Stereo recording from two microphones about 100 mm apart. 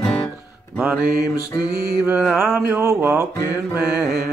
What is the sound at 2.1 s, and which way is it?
Mantra, 5° right (ahead or behind).